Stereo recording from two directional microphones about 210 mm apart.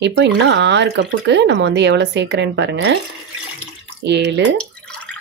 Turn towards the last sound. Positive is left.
turn(degrees=5)  # may be behind; listen again after turning